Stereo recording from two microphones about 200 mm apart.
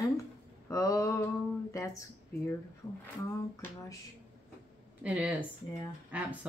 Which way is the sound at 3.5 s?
15° left (ahead or behind).